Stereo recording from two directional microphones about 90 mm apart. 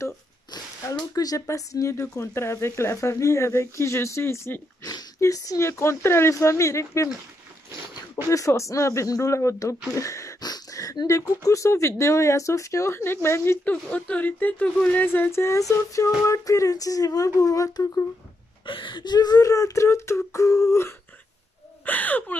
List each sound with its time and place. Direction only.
0.8 s speech: 40° left (ahead or behind)
8.3 s speech: 35° left (ahead or behind)
10.4 s a sound: 45° left (ahead or behind)
11.4 s speech: 35° left (ahead or behind)
13.7 s speech: 15° left (ahead or behind); by 18.0 s 40° left (ahead or behind)
18.7 s speech: 65° left (ahead or behind); by 20.9 s 35° left (ahead or behind)
21.8 s speech: 20° left (ahead or behind)